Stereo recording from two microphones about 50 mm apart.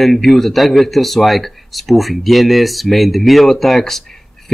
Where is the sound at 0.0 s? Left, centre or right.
Centre.